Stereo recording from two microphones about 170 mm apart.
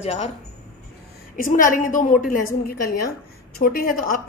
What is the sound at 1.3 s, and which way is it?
Speech, 50° left (ahead or behind).